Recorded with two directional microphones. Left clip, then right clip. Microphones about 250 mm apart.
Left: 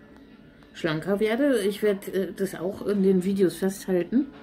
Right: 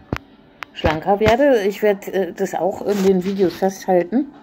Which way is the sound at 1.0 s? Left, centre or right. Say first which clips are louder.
Right 10 dB; right.